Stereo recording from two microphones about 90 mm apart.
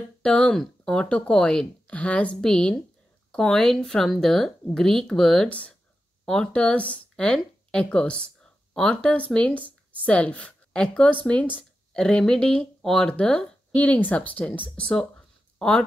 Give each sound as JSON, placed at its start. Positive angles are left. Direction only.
{"t": 0.2, "sound": "speech", "side_deg": 10}
{"t": 5.5, "sound": "speech", "side_deg": 15}